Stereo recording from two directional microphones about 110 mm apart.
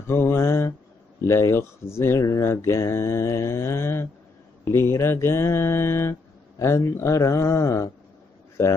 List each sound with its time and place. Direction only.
0.0 s mantra: 20° left (ahead or behind)
1.2 s speech: 25° left (ahead or behind)